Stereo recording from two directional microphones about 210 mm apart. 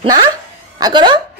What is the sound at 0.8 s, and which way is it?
Speech, 20° right (ahead or behind).